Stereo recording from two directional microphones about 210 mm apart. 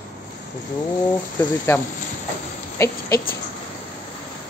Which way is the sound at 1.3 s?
10° left (ahead or behind).